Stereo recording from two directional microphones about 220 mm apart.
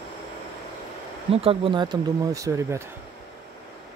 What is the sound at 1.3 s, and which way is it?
Speech, 25° right (ahead or behind).